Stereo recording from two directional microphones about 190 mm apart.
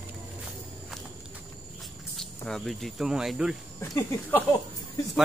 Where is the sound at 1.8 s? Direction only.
Centre (ahead or behind).